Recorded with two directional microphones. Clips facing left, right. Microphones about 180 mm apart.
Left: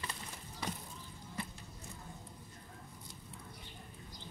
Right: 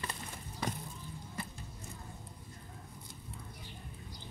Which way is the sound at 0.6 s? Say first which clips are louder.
Right 4 dB; 55° right (ahead or behind).